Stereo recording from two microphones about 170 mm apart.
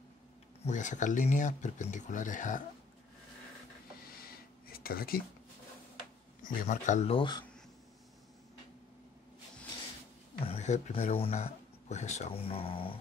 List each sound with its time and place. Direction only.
0.7 s speech: 45° left (ahead or behind)
4.6 s a sound: 60° left (ahead or behind)
6.4 s speech: 50° left (ahead or behind); by 7.4 s 30° left (ahead or behind)
10.4 s speech: 40° left (ahead or behind)